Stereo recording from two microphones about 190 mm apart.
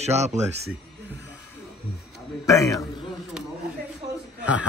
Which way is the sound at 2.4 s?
15° left (ahead or behind).